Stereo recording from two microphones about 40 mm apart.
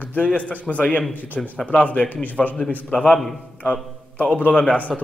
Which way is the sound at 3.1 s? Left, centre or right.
Centre.